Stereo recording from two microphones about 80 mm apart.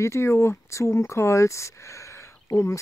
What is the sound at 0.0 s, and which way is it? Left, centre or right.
Speech, left.